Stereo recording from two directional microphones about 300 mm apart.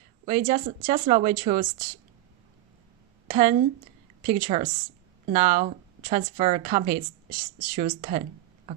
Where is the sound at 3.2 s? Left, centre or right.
Right.